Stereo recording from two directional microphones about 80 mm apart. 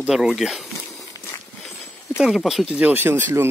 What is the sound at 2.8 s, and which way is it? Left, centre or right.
Speech, right.